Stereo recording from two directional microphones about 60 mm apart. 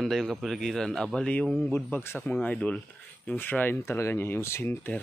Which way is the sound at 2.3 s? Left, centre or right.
Left.